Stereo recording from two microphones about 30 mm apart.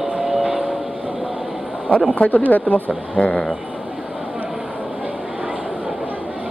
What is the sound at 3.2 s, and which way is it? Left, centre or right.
Speech, left.